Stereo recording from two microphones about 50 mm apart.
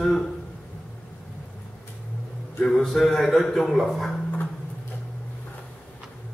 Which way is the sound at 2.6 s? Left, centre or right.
Centre.